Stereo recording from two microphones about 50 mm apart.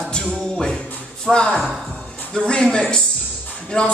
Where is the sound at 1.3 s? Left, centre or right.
Centre.